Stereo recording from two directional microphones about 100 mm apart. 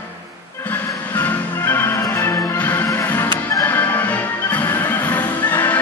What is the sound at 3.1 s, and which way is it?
Music, 15° left (ahead or behind).